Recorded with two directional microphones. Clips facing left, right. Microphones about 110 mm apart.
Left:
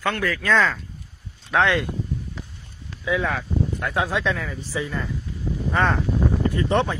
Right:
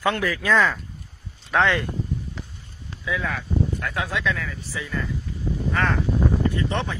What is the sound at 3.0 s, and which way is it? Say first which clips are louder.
Speech: left 4 dB; 25° left (ahead or behind).